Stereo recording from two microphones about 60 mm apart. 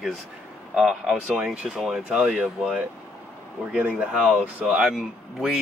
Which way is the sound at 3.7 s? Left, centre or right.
Right.